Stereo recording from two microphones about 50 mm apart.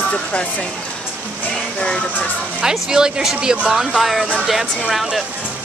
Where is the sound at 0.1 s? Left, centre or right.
Left.